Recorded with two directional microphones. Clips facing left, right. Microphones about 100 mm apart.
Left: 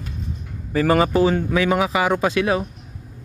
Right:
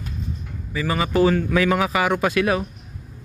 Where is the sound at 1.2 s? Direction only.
20° left (ahead or behind).